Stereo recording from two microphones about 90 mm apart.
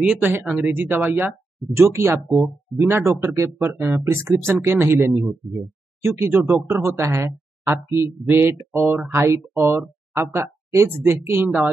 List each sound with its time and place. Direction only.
0.0 s speech: 15° right (ahead or behind); by 2.1 s 30° right (ahead or behind)
2.2 s speech: 5° right (ahead or behind)
2.9 s speech: 25° right (ahead or behind)